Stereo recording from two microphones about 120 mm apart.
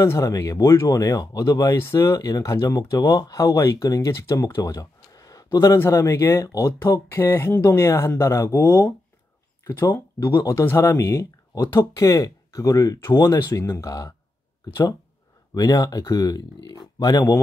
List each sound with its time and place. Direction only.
0.0 s speech: 25° left (ahead or behind)
15.5 s speech: 30° left (ahead or behind)